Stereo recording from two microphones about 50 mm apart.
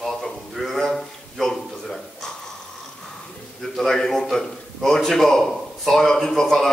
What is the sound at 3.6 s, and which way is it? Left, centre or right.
A man's voice, centre.